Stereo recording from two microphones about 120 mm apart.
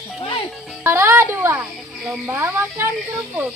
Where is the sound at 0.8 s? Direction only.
20° right (ahead or behind).